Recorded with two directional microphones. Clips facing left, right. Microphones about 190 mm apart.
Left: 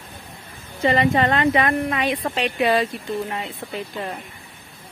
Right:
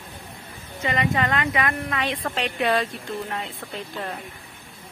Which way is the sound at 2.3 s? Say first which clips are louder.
Left 3 dB; 5° left (ahead or behind).